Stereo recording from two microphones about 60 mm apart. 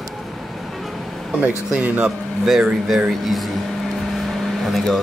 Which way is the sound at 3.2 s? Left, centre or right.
Centre.